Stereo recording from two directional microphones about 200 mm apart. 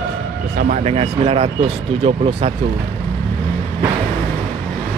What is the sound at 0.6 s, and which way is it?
Speech, 40° right (ahead or behind).